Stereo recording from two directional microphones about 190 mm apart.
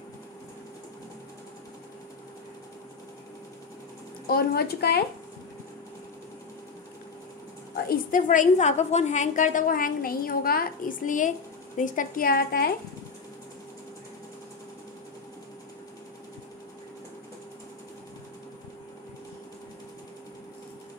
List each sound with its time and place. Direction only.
4.3 s a woman's voice: 55° left (ahead or behind)
7.7 s a woman's voice: 50° left (ahead or behind)